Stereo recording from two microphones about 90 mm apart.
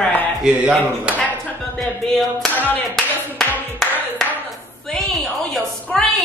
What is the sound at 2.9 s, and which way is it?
Clapping, 5° left (ahead or behind).